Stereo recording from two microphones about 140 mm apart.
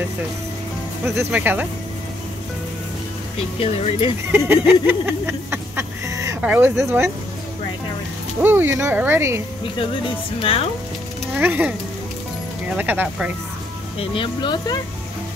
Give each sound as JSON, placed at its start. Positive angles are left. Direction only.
{"t": 1.0, "sound": "speech", "side_deg": -15}
{"t": 3.3, "sound": "speech", "side_deg": 45}
{"t": 4.3, "sound": "speech", "side_deg": -15}
{"t": 4.8, "sound": "a sound", "side_deg": -15}
{"t": 6.4, "sound": "speech", "side_deg": -10}
{"t": 8.4, "sound": "speech", "side_deg": -15}
{"t": 9.8, "sound": "speech", "side_deg": 40}
{"t": 11.3, "sound": "speech", "side_deg": -15}
{"t": 13.9, "sound": "speech", "side_deg": 35}